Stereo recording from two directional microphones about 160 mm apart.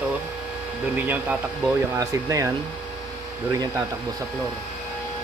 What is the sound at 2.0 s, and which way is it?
Speech, 20° right (ahead or behind).